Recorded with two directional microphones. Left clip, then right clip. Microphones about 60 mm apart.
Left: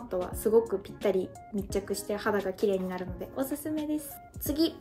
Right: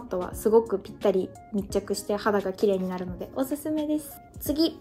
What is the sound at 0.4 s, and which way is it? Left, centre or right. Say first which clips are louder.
Speech: right 4 dB; right.